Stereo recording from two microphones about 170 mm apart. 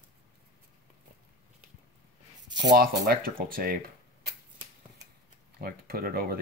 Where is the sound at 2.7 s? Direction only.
60° right (ahead or behind).